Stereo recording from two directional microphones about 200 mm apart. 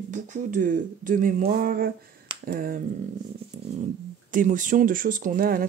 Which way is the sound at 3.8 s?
40° right (ahead or behind).